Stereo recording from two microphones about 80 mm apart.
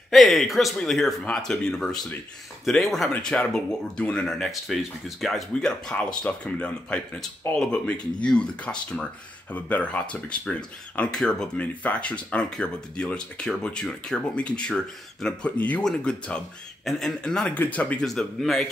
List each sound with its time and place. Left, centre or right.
0.1 s speech: centre
18.0 s speech: centre